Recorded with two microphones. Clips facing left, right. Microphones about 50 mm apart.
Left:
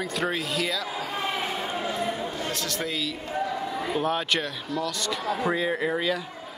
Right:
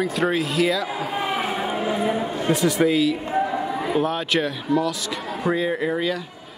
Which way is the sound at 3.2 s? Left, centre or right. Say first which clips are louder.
Right 6 dB; right.